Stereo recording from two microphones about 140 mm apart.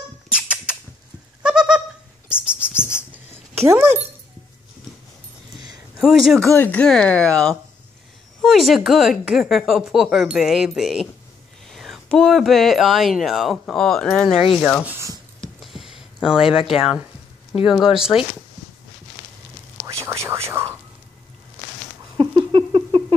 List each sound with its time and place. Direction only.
0.3 s rodents: 5° right (ahead or behind)
1.4 s goat: 5° right (ahead or behind)
2.2 s bird: 10° right (ahead or behind)
2.8 s a sound: 15° left (ahead or behind)
3.5 s speech: 15° right (ahead or behind)
5.9 s speech: centre (ahead or behind)
6.5 s speech: 15° left (ahead or behind)
14.9 s a sound: 20° right (ahead or behind)
15.6 s a sound: centre (ahead or behind)
17.6 s speech: 5° right (ahead or behind)
19.9 s whispering: 20° right (ahead or behind)
22.1 s a sound: 35° right (ahead or behind)